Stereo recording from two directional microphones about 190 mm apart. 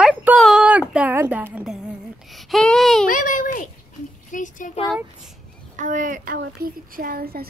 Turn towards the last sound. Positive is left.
turn(degrees=-55)  # may be behind; listen again after turning